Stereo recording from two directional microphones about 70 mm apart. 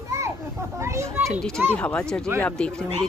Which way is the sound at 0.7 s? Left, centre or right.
Right.